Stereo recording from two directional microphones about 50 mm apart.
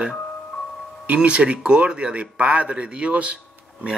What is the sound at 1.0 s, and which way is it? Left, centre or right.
Speech, right.